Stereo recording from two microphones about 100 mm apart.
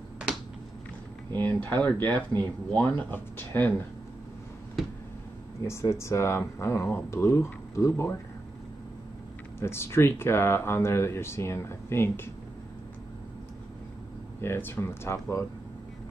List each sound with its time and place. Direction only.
1.4 s speech: 15° left (ahead or behind)
5.6 s speech: 25° left (ahead or behind)
9.6 s speech: 25° left (ahead or behind)
14.4 s speech: 25° left (ahead or behind)